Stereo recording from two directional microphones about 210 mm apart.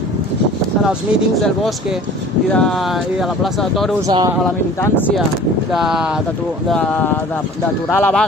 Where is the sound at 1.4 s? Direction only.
Centre (ahead or behind).